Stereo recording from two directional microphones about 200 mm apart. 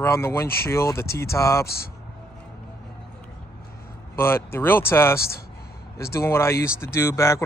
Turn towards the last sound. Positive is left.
turn(degrees=15)  # may be behind; listen again after turning